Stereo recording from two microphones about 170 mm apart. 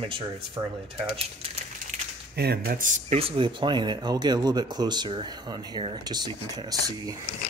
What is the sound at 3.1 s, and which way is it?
Speech, 30° right (ahead or behind).